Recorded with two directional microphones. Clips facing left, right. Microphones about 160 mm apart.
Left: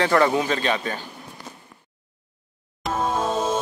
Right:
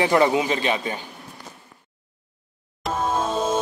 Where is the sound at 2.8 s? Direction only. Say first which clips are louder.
Even; centre (ahead or behind).